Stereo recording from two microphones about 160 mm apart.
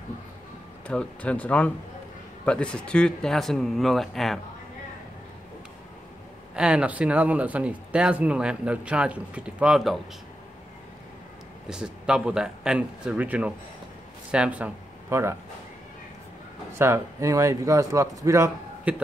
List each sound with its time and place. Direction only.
0.8 s speech: 5° left (ahead or behind)
6.5 s speech: 5° right (ahead or behind)
11.7 s speech: 5° right (ahead or behind)
16.7 s speech: 15° right (ahead or behind)
18.9 s speech: 10° right (ahead or behind)